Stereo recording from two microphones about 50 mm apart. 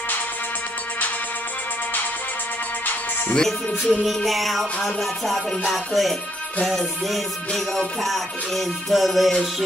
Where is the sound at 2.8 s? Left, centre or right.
Left.